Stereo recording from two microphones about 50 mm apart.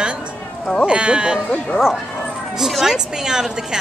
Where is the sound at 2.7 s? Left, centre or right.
Centre.